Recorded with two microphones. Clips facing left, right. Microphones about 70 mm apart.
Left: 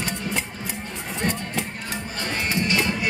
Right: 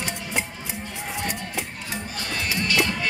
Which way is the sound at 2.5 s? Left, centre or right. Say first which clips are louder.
Even; left.